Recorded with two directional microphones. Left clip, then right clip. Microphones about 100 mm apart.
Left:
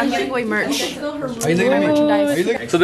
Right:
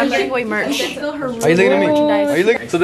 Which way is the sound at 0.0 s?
15° right (ahead or behind).